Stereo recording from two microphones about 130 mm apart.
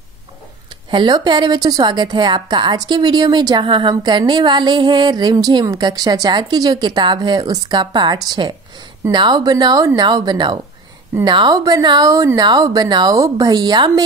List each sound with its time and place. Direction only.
0.8 s a woman's voice: 35° right (ahead or behind)